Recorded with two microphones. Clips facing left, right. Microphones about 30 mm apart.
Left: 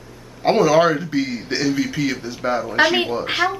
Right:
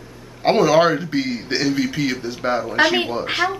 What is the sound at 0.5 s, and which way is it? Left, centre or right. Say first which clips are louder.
A man's voice: even; centre.